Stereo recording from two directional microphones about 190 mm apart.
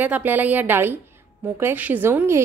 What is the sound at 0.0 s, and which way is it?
A woman's voice, 10° right (ahead or behind).